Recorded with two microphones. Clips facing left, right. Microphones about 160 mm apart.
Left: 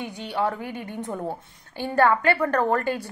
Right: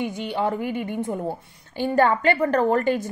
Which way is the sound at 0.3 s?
15° right (ahead or behind).